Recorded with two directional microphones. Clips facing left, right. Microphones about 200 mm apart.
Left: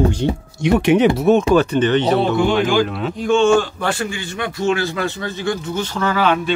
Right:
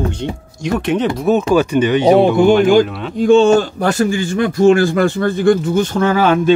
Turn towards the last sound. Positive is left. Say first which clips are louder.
# right 5 dB
turn(degrees=-45)  # may be behind; listen again after turning